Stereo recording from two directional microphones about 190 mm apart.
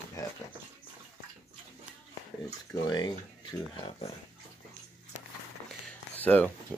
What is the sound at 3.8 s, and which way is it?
Speech, 35° left (ahead or behind).